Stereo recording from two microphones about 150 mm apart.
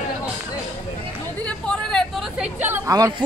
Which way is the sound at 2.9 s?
25° right (ahead or behind).